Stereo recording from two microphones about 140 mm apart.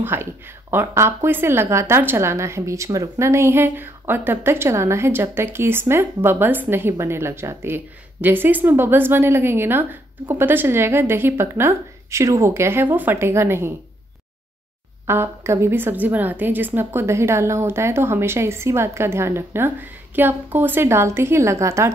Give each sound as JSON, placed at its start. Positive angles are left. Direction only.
{"t": 0.0, "sound": "speech", "side_deg": -15}
{"t": 15.0, "sound": "speech", "side_deg": -20}